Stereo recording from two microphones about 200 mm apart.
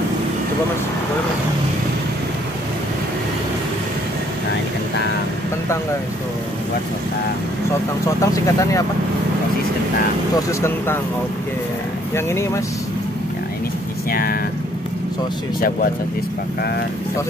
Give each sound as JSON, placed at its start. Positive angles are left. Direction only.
{"t": 8.2, "sound": "speech", "side_deg": 15}
{"t": 12.3, "sound": "speech", "side_deg": 15}